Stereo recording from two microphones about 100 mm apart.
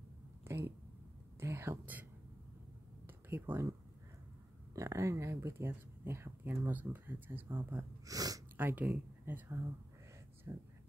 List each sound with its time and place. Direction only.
0.5 s a sound: 25° right (ahead or behind)
1.4 s speech: 25° right (ahead or behind)
3.3 s speech: 20° right (ahead or behind)
4.7 s speech: 30° right (ahead or behind)
8.1 s a sound: 40° right (ahead or behind)
8.5 s speech: 20° right (ahead or behind)
10.5 s speech: 35° right (ahead or behind)